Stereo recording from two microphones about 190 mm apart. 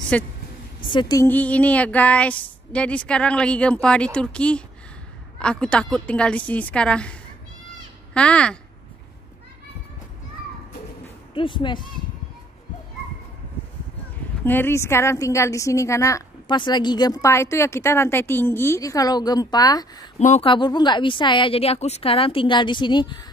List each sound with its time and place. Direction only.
0.1 s a woman's voice: 5° left (ahead or behind)
0.8 s a woman's voice: 25° left (ahead or behind); by 8.5 s 5° left (ahead or behind)
11.3 s a woman's voice: 25° left (ahead or behind)
14.4 s a woman's voice: 10° left (ahead or behind)
20.2 s speech: 40° left (ahead or behind)
20.4 s a woman's voice: 25° left (ahead or behind)